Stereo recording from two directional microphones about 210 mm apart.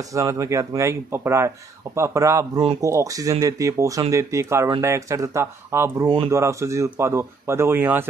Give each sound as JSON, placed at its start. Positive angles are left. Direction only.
{"t": 0.0, "sound": "speech", "side_deg": -15}